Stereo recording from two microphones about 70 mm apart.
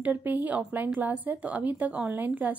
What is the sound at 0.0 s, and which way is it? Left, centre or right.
Speech, right.